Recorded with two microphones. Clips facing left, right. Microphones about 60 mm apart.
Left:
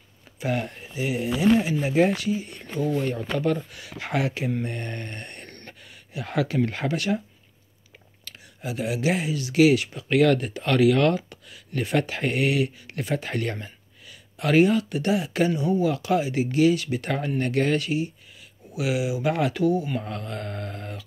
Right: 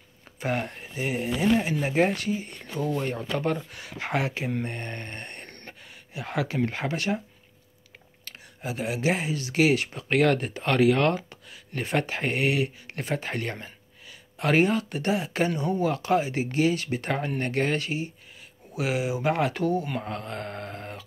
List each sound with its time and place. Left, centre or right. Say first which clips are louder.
0.4 s speech: left 1 dB; right
8.3 s speech: left 1 dB; right
15.5 s speech: left 3 dB; right
19.6 s speech: left 3 dB; right
20.0 s speech: even; right